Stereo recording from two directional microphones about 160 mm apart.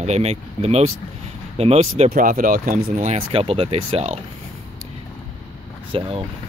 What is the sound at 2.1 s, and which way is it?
Speech, 60° right (ahead or behind).